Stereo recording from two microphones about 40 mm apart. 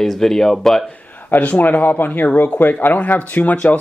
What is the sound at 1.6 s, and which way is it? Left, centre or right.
Speech, left.